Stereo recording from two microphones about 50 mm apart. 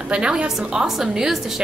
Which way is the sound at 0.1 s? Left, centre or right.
Centre.